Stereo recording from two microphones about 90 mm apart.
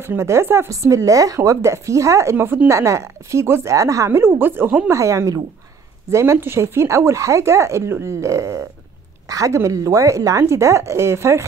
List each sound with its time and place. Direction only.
0.0 s speech: 30° right (ahead or behind)
4.8 s speech: 35° right (ahead or behind)